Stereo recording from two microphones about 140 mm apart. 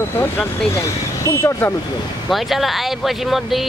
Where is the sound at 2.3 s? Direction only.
Centre (ahead or behind).